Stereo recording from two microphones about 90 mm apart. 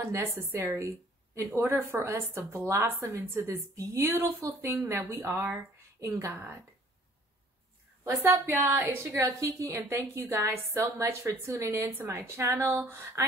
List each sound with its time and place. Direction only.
0.0 s a woman's voice: 30° right (ahead or behind)
8.0 s a woman's voice: 30° right (ahead or behind)